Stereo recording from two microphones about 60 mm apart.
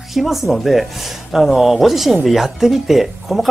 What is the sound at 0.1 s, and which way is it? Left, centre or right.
Speech, centre.